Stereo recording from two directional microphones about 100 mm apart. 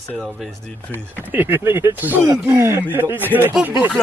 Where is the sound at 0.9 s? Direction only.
20° right (ahead or behind).